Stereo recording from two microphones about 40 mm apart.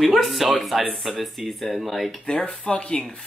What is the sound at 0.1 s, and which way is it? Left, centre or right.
Speech, centre.